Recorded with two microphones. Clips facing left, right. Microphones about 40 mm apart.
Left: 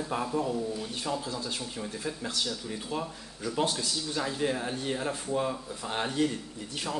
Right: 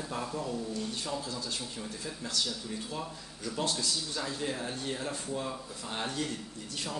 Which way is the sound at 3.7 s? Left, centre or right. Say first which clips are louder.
Left 1 dB; centre.